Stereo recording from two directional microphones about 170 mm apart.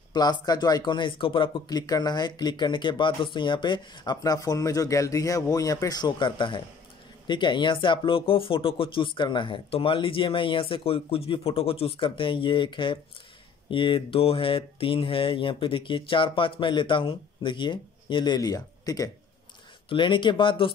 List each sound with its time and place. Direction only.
0.1 s speech: 25° left (ahead or behind)